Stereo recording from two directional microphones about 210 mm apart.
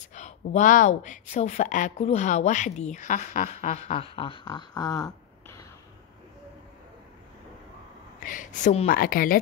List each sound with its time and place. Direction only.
0.1 s speech: 35° left (ahead or behind); by 5.0 s 20° left (ahead or behind)
5.0 s a sound: 10° left (ahead or behind)
8.2 s speech: 40° left (ahead or behind)